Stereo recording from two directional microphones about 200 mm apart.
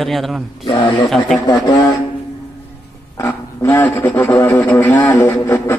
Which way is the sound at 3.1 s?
15° left (ahead or behind).